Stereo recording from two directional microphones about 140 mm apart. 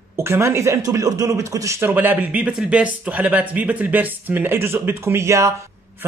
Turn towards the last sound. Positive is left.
turn(degrees=-20)  # may be behind; listen again after turning